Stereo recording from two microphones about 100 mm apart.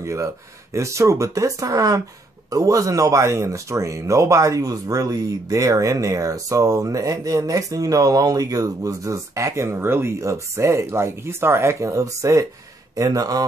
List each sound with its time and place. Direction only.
0.0 s speech: 30° right (ahead or behind)